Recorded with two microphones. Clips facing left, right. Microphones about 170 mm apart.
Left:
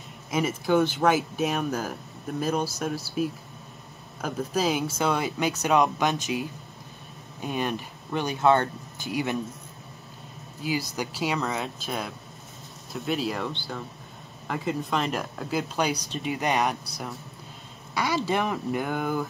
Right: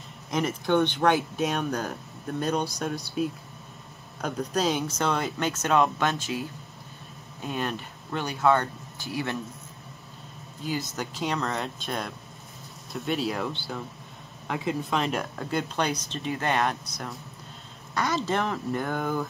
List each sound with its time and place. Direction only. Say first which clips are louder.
0.3 s speech: left 1 dB; 5° left (ahead or behind)
7.4 s speech: left 2 dB; 10° left (ahead or behind)
10.6 s speech: left 2 dB; 10° left (ahead or behind)